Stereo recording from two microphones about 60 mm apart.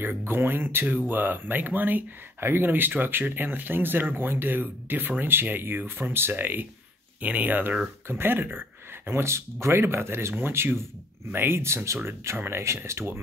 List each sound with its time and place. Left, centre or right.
0.0 s speech: right